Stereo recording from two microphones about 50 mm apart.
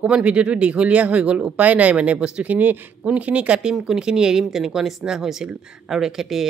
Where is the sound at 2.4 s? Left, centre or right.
Right.